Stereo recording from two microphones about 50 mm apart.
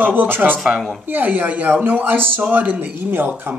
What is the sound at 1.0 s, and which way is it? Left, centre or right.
Speech, right.